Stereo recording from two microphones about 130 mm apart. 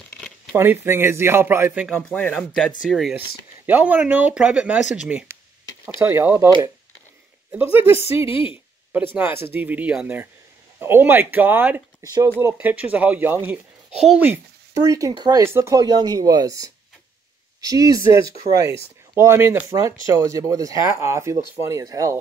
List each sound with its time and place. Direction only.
0.6 s speech: 20° right (ahead or behind)
1.9 s speech: 5° left (ahead or behind)
3.2 s speech: 15° right (ahead or behind)
7.5 s speech: 15° right (ahead or behind)
7.9 s speech: 50° left (ahead or behind)
8.9 s speech: 15° right (ahead or behind); by 15.4 s 35° right (ahead or behind)
15.4 s speech: 20° right (ahead or behind)
20.1 s speech: 25° right (ahead or behind)